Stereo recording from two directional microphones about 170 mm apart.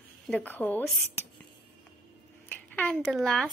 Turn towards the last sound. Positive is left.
turn(degrees=0)  # may be behind; listen again after turning